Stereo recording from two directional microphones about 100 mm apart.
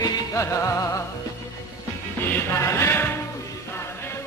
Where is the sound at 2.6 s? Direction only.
25° left (ahead or behind).